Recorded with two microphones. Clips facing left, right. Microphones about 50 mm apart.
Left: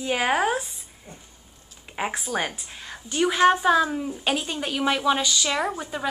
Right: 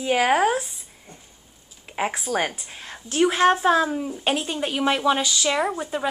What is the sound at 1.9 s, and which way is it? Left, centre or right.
A woman's voice, centre.